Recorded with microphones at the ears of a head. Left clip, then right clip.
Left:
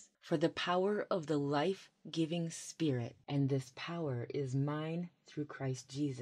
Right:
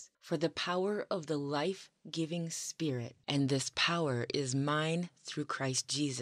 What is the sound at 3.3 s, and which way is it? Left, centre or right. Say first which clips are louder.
Speech: right 5 dB; right.